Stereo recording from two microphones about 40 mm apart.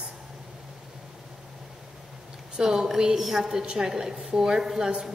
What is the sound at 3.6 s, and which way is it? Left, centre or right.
A woman's voice, right.